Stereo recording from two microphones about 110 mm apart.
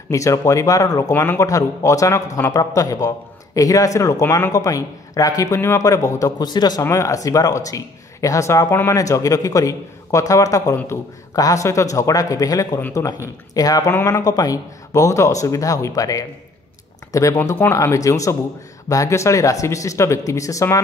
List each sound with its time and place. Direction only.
0.1 s speech: 30° left (ahead or behind)
6.8 s speech: 30° left (ahead or behind)